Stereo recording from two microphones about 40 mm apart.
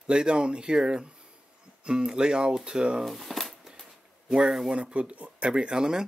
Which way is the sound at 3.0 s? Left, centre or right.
Centre.